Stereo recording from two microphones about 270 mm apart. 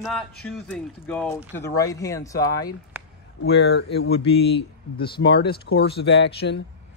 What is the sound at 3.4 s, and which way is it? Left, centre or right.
Speech, left.